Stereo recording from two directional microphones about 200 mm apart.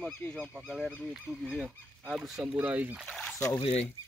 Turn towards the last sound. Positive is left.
turn(degrees=20)  # may be behind; listen again after turning